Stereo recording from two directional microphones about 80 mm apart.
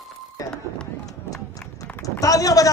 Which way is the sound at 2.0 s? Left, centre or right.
Left.